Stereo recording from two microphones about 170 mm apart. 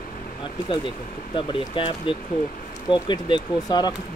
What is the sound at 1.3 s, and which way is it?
Speech, 30° left (ahead or behind).